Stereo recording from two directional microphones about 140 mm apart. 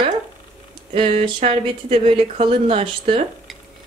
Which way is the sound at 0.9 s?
45° right (ahead or behind).